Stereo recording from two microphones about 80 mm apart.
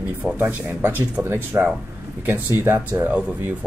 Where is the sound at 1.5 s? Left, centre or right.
Right.